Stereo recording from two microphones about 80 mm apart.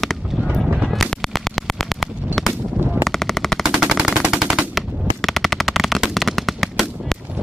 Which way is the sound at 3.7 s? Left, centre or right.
Centre.